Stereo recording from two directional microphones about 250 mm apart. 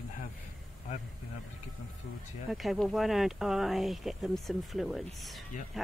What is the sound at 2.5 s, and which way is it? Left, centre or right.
Speech, centre.